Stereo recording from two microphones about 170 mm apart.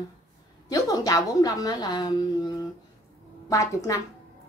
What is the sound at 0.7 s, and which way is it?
A woman's voice, 20° left (ahead or behind).